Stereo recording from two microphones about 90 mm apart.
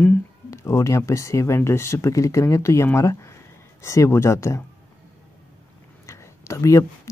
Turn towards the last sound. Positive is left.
turn(degrees=35)  # may be behind; listen again after turning